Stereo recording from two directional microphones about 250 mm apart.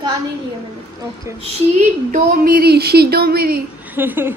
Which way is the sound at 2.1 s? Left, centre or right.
Right.